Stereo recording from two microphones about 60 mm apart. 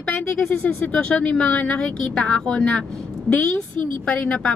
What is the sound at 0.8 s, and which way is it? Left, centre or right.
Speech, left.